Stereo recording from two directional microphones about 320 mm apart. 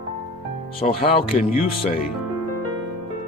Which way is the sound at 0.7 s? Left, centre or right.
Centre.